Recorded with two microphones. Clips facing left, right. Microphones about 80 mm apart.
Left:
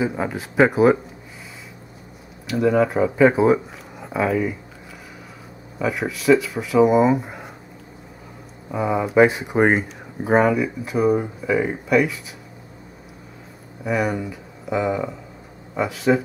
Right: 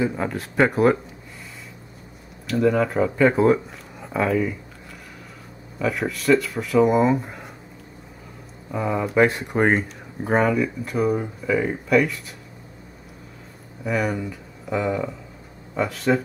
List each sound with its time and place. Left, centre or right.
0.0 s speech: centre
2.4 s speech: centre
5.8 s speech: centre
8.7 s speech: centre
13.8 s speech: centre